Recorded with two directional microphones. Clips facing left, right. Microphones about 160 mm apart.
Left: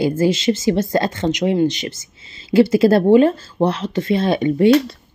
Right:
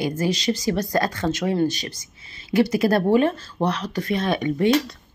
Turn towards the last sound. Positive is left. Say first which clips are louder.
# left 6 dB
turn(degrees=30)  # may be behind; listen again after turning